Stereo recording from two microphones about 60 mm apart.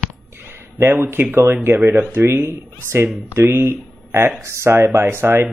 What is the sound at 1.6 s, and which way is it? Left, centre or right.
Speech, right.